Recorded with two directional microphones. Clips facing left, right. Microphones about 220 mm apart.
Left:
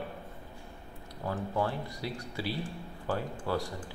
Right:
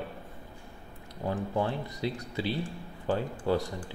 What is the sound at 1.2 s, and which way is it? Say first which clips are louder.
Speech: right 2 dB; 20° right (ahead or behind).